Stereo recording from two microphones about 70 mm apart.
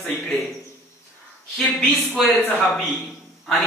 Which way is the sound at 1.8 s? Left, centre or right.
Centre.